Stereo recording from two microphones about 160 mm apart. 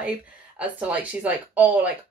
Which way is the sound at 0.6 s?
10° right (ahead or behind).